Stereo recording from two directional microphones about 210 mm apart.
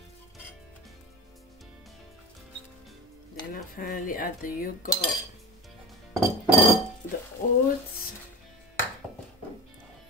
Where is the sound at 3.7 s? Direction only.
40° left (ahead or behind).